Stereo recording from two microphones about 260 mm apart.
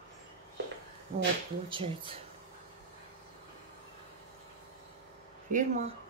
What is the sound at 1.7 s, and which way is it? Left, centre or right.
Speech, centre.